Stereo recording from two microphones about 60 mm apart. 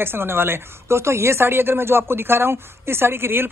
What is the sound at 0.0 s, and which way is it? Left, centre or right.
A woman's voice, right.